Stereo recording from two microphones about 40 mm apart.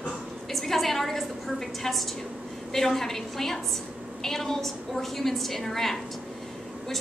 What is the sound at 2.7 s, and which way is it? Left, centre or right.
A woman's voice, centre.